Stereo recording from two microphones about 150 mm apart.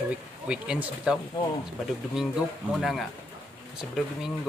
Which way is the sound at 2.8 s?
Centre (ahead or behind).